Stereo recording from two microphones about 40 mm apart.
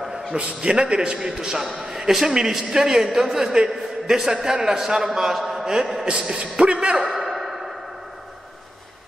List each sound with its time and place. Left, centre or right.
0.4 s a man's voice: right
1.6 s a man's voice: centre
6.0 s a man's voice: right
7.0 s a sound: centre